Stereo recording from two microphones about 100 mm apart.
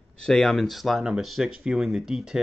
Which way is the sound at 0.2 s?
5° left (ahead or behind).